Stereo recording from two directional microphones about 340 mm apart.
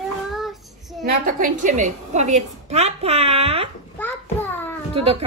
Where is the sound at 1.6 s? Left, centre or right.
Right.